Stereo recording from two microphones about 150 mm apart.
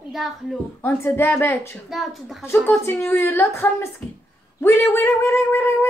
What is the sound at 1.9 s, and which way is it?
Speech, centre (ahead or behind).